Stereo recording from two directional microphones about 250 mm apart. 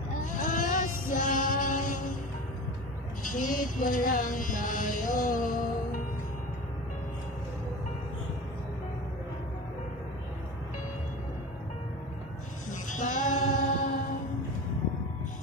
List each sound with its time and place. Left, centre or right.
0.2 s music: left
3.3 s speech: left
12.9 s music: left